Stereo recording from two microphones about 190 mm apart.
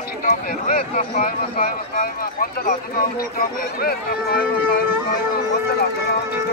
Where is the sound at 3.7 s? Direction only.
50° left (ahead or behind).